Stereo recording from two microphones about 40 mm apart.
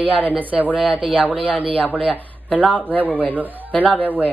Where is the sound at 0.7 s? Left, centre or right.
Left.